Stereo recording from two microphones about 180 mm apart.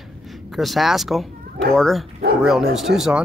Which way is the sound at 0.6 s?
Centre (ahead or behind).